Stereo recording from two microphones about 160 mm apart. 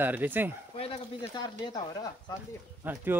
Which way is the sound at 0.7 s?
35° left (ahead or behind).